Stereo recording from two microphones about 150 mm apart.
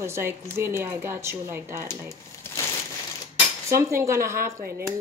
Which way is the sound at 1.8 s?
20° left (ahead or behind).